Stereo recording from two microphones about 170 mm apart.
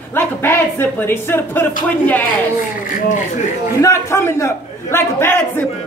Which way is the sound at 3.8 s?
15° left (ahead or behind).